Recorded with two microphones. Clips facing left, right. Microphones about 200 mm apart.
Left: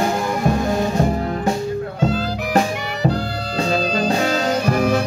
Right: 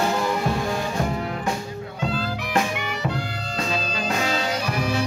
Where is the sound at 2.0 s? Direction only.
40° left (ahead or behind).